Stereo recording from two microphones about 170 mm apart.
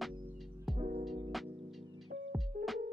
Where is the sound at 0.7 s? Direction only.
45° right (ahead or behind).